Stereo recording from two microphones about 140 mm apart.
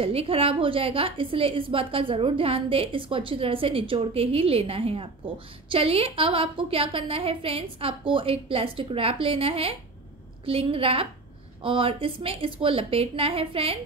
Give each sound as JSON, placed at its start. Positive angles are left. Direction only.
{"t": 0.0, "sound": "a woman's voice", "side_deg": -45}